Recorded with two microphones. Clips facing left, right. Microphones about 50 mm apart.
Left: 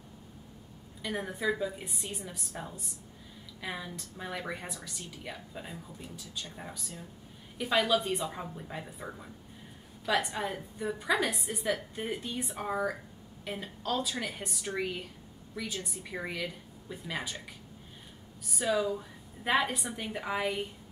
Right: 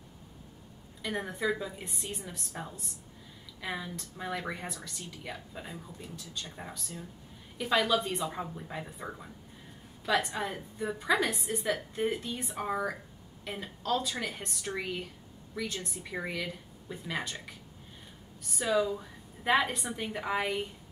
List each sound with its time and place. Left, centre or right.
1.0 s speech: centre